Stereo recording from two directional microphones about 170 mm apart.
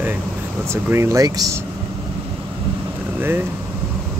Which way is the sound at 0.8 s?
15° right (ahead or behind).